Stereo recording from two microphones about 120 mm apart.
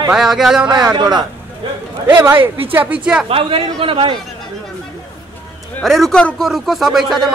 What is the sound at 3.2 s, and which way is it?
Speech, 50° right (ahead or behind).